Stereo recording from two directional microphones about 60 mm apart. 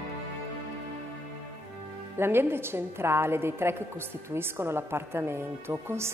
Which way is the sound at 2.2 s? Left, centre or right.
Right.